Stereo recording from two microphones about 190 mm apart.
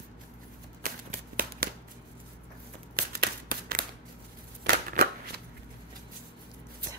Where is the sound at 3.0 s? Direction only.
50° right (ahead or behind).